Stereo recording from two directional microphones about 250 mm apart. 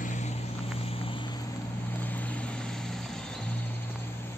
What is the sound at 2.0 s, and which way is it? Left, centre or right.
Music, centre.